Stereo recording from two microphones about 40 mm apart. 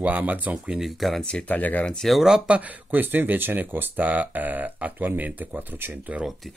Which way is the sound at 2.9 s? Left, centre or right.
Right.